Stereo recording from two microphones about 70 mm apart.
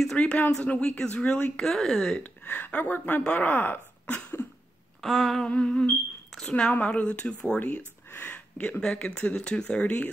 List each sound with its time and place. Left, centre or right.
0.0 s speech: centre
0.7 s speech: centre
1.6 s speech: centre
2.2 s speech: left
5.0 s a sound: centre
5.5 s speech: centre
8.1 s a sound: left
8.5 s speech: centre